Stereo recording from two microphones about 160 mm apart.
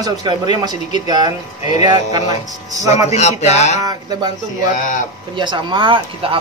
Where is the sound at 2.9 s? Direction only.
45° left (ahead or behind).